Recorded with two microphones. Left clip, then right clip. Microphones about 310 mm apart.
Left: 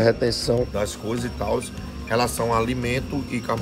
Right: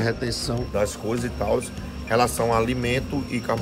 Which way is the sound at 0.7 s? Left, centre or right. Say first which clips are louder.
Right 2 dB; centre.